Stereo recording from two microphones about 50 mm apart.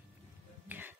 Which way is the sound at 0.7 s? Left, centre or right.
Right.